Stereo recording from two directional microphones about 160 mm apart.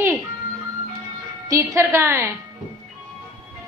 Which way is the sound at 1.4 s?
20° right (ahead or behind).